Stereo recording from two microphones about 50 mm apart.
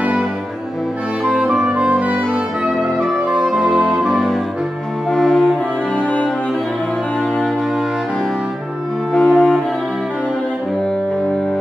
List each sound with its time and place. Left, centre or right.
1.8 s music: right
3.4 s music: centre
5.1 s cello: centre
9.1 s music: centre